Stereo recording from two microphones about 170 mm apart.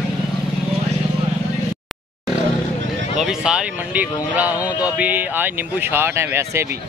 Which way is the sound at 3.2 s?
5° right (ahead or behind).